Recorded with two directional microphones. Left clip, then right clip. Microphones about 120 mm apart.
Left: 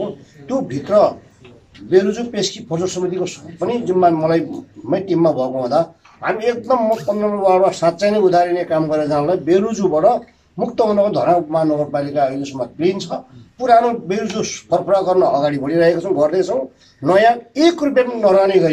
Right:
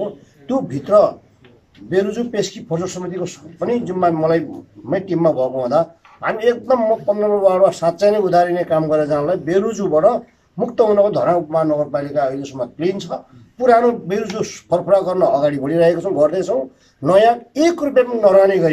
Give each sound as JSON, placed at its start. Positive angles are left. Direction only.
{"t": 0.7, "sound": "a man's voice", "side_deg": -15}
{"t": 7.5, "sound": "a man's voice", "side_deg": -10}
{"t": 13.7, "sound": "speech", "side_deg": 20}
{"t": 14.1, "sound": "a man's voice", "side_deg": -10}